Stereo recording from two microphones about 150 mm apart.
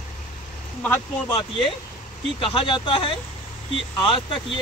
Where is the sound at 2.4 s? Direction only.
35° left (ahead or behind).